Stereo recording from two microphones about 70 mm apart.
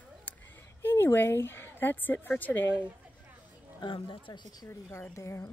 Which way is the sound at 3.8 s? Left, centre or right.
Left.